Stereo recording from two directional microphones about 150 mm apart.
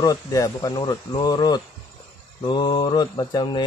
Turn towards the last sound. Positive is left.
turn(degrees=30)  # may be behind; listen again after turning